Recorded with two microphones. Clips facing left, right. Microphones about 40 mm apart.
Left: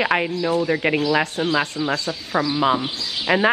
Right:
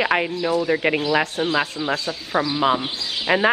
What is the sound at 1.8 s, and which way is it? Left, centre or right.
Speech, right.